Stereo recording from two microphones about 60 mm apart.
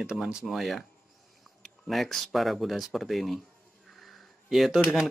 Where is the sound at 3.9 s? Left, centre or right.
Centre.